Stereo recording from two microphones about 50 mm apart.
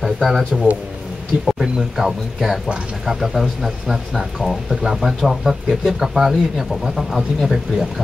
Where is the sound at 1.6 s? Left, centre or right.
Centre.